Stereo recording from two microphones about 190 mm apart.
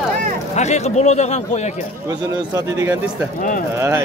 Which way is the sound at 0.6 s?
35° left (ahead or behind).